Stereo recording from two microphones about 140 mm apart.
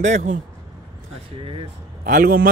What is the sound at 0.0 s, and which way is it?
Speech, 60° right (ahead or behind).